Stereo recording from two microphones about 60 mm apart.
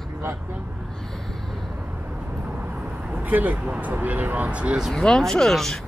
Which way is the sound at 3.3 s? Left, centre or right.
Right.